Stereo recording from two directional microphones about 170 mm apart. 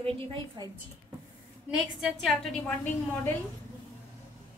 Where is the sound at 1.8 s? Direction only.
5° right (ahead or behind).